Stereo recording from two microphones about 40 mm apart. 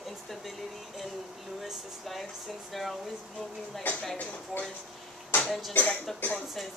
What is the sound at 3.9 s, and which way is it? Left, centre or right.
Speech, left.